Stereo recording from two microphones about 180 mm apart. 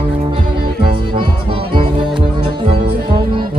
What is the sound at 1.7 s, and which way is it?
Music, 30° right (ahead or behind).